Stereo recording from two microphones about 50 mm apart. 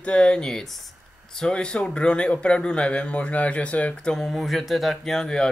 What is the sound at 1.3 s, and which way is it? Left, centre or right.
Speech, centre.